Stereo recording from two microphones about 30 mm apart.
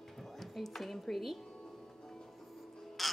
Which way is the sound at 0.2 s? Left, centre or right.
Centre.